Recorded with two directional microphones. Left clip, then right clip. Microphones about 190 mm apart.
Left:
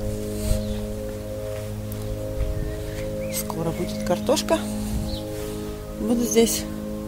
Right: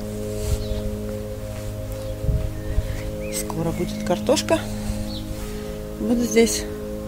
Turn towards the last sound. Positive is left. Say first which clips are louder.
# right 1 dB
turn(degrees=5)  # may be behind; listen again after turning